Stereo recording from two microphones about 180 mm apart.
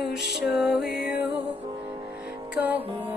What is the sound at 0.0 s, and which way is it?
Music, centre (ahead or behind).